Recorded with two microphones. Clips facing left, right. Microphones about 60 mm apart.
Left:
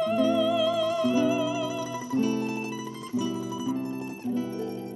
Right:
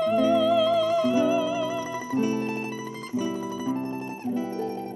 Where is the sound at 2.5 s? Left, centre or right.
Right.